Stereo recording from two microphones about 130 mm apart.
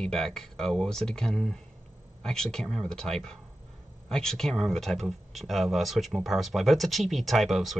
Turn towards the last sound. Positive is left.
turn(degrees=0)  # may be behind; listen again after turning